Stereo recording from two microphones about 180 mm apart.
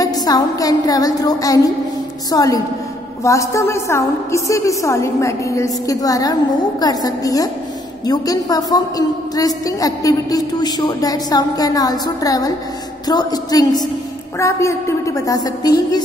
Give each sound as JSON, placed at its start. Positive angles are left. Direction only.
{"t": 0.0, "sound": "a woman's voice", "side_deg": 20}